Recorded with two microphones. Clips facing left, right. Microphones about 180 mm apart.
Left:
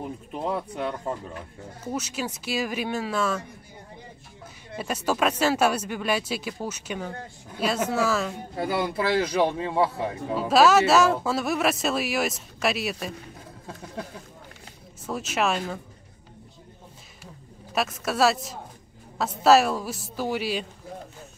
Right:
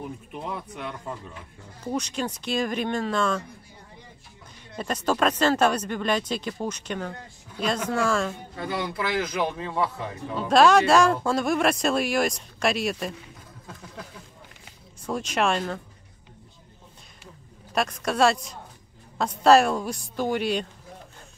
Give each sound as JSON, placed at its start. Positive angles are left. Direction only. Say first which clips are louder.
{"t": 0.3, "sound": "speech", "louder": "left 9 dB", "side_deg": 35}
{"t": 1.9, "sound": "speech", "louder": "right 2 dB", "side_deg": 5}
{"t": 4.7, "sound": "speech", "louder": "right 1 dB", "side_deg": 10}
{"t": 8.5, "sound": "a man's voice", "louder": "left 4 dB", "side_deg": 30}
{"t": 10.3, "sound": "speech", "louder": "right 1 dB", "side_deg": 5}
{"t": 13.7, "sound": "a sound", "louder": "left 5 dB", "side_deg": 30}
{"t": 15.0, "sound": "speech", "louder": "right 1 dB", "side_deg": 5}
{"t": 17.7, "sound": "speech", "louder": "right 1 dB", "side_deg": 5}